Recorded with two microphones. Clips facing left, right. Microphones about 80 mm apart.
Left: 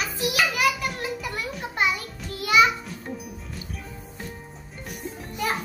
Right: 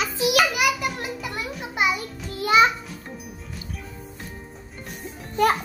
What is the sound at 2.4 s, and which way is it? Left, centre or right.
Music, right.